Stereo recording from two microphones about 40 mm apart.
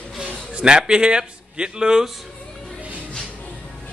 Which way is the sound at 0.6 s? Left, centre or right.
Right.